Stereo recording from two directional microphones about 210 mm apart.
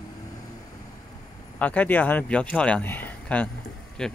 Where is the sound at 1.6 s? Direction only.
5° left (ahead or behind).